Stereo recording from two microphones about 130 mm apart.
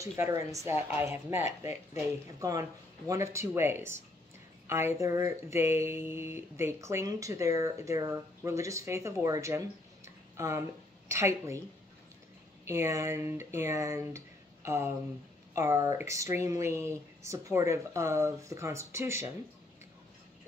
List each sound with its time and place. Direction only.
0.0 s speech: 25° right (ahead or behind)
3.1 s speech: 20° right (ahead or behind)
12.6 s speech: 20° right (ahead or behind)